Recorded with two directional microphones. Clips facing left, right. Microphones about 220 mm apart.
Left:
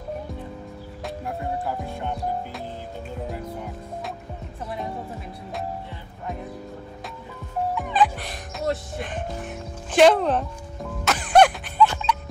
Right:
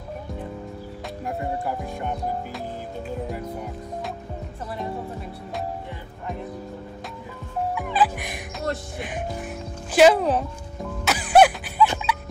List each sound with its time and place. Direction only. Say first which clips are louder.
7.7 s music: left 1 dB; 10° right (ahead or behind)